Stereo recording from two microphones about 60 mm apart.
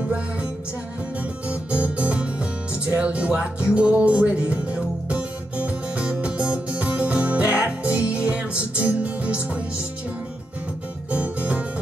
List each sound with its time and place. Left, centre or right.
1.5 s music: right
11.1 s music: right